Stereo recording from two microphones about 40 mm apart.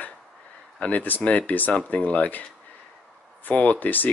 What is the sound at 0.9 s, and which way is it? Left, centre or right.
Speech, left.